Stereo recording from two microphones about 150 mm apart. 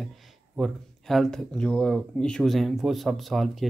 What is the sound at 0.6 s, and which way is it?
Speech, centre (ahead or behind).